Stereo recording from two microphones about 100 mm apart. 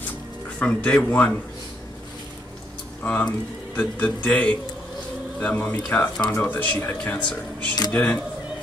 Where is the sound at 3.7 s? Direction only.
15° left (ahead or behind).